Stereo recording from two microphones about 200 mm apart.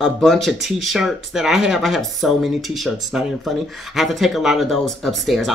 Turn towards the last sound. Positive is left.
turn(degrees=0)  # may be behind; listen again after turning